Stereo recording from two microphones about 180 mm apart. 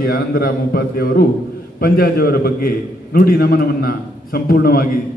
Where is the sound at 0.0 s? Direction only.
55° left (ahead or behind).